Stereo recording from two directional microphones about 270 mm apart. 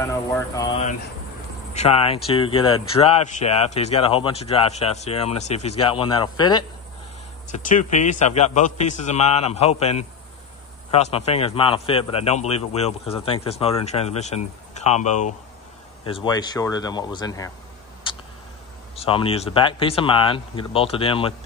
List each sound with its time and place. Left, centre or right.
0.0 s a man's voice: centre
7.4 s a man's voice: left
18.9 s a man's voice: centre